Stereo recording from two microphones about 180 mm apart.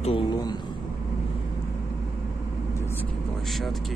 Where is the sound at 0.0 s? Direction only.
30° left (ahead or behind).